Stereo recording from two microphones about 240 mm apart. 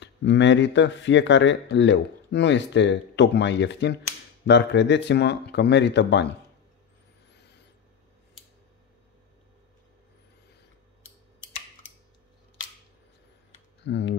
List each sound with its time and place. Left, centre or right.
0.0 s speech: left
7.3 s a sound: left
13.8 s speech: left